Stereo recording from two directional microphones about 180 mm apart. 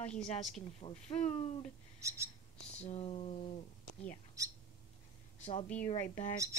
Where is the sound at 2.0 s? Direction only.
15° right (ahead or behind).